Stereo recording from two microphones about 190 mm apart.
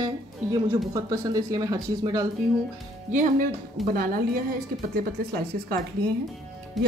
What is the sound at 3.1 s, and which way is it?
A woman's voice, 40° right (ahead or behind).